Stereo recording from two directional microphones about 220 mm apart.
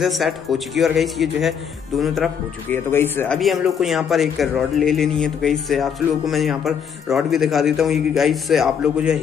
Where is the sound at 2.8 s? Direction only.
10° left (ahead or behind).